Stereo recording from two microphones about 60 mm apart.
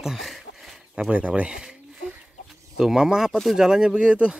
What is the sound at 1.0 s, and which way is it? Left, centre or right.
Speech, right.